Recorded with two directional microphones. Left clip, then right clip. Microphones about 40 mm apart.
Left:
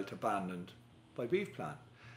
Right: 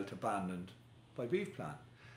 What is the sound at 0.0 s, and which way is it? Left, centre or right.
Speech, left.